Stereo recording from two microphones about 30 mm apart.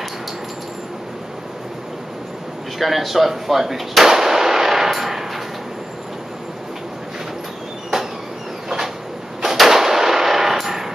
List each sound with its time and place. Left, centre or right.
2.8 s speech: centre
4.1 s gunshot: centre
8.6 s a sound: centre
9.4 s gunshot: centre